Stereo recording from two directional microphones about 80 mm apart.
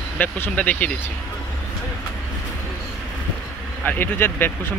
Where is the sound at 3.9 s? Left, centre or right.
Left.